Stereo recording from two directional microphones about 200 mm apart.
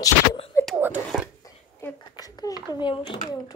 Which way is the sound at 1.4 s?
15° left (ahead or behind).